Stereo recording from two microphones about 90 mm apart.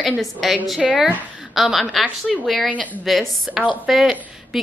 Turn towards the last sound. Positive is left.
turn(degrees=0)  # may be behind; listen again after turning